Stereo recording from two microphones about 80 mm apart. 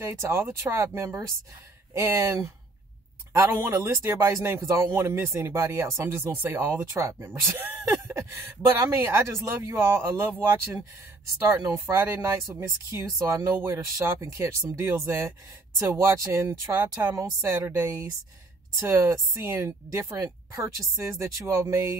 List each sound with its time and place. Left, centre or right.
0.0 s speech: right
8.7 s speech: right
17.1 s speech: right
17.8 s speech: right
18.8 s speech: right